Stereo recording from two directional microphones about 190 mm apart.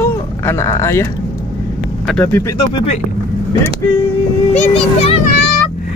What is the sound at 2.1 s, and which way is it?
Speech, 10° left (ahead or behind).